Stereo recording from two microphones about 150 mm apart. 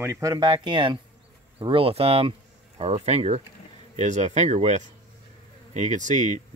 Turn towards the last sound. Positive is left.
turn(degrees=-55)  # may be behind; listen again after turning